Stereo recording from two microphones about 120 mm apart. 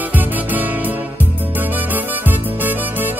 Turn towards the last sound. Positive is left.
turn(degrees=-15)  # may be behind; listen again after turning